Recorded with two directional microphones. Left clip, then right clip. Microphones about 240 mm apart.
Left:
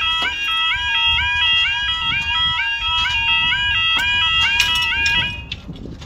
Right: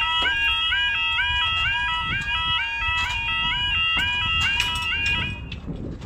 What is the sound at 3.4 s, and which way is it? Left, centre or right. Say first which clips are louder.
Fire alarm: left 5 dB; left.